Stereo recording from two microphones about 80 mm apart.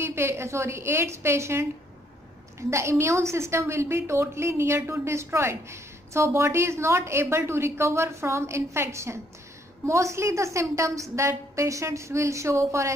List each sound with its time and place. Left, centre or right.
0.0 s a woman's voice: right
2.7 s a woman's voice: right